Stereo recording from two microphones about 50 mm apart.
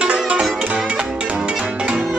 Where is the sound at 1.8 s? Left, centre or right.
Centre.